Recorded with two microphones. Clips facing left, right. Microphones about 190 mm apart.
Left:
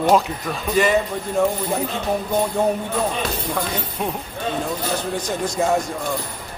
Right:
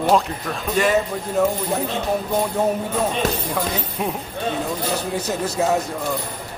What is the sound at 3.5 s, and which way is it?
A man's voice, 5° right (ahead or behind).